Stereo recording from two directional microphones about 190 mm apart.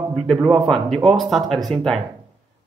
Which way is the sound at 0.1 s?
Centre (ahead or behind).